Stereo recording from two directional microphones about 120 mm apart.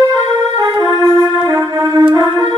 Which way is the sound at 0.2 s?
25° right (ahead or behind).